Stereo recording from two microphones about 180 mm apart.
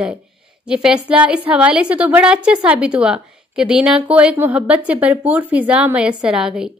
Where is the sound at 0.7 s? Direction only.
5° right (ahead or behind).